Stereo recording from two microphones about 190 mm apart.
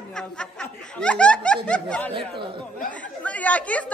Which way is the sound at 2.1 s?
25° right (ahead or behind).